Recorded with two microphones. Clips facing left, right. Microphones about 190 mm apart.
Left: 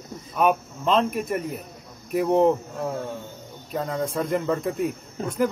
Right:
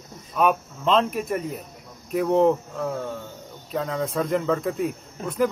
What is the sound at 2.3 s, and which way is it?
Speech, 15° left (ahead or behind).